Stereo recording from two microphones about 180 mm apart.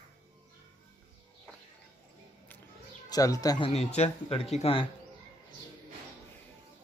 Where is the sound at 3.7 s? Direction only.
35° left (ahead or behind).